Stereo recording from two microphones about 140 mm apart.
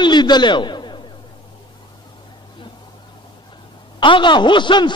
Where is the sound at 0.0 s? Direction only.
30° left (ahead or behind).